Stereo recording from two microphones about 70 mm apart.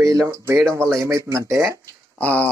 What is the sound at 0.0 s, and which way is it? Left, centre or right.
Speech, right.